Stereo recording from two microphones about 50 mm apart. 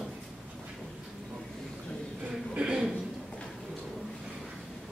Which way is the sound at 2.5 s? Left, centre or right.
Centre.